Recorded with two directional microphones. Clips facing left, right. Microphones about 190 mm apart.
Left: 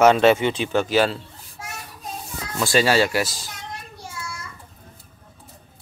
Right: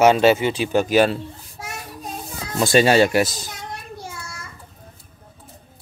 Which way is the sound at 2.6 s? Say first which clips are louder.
Right 4 dB; 20° right (ahead or behind).